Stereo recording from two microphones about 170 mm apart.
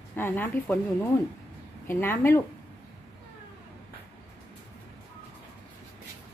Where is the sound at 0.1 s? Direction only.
10° left (ahead or behind).